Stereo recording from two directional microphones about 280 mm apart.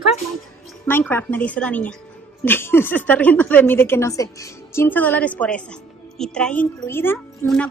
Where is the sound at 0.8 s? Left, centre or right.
Centre.